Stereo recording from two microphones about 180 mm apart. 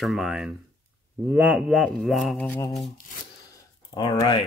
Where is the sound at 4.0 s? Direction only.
25° left (ahead or behind).